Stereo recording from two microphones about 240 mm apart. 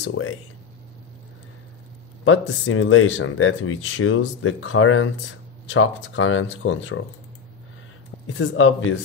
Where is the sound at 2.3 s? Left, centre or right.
Left.